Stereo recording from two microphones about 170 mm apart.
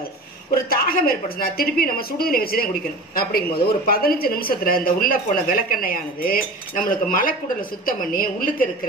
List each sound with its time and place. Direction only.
0.7 s speech: 60° left (ahead or behind)